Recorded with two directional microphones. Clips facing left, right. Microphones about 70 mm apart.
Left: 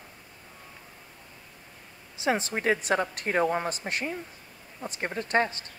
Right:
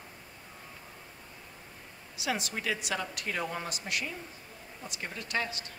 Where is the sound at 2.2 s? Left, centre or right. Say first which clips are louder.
Left 7 dB; left.